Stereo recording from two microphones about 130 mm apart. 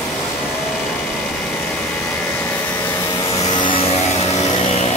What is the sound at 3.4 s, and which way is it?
Vehicle, 35° left (ahead or behind).